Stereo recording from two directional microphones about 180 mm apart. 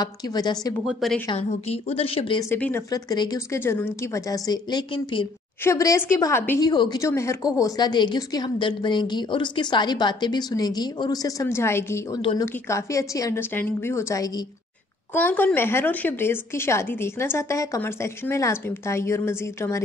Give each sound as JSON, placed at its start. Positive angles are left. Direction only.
{"t": 0.0, "sound": "a woman's voice", "side_deg": 20}
{"t": 0.8, "sound": "a woman's voice", "side_deg": 0}
{"t": 1.3, "sound": "a woman's voice", "side_deg": 35}
{"t": 2.5, "sound": "a woman's voice", "side_deg": 15}
{"t": 5.6, "sound": "a woman's voice", "side_deg": 15}
{"t": 6.7, "sound": "a woman's voice", "side_deg": 25}
{"t": 12.2, "sound": "a woman's voice", "side_deg": 30}
{"t": 12.4, "sound": "a woman's voice", "side_deg": 15}